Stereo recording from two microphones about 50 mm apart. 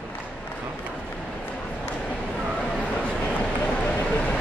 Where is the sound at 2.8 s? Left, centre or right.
Left.